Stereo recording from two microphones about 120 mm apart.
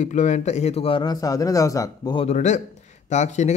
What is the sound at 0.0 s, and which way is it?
Speech, 90° left.